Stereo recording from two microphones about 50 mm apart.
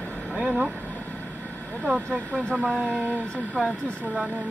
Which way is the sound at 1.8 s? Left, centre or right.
Right.